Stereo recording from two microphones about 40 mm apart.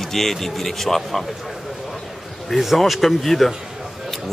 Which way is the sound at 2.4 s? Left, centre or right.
Centre.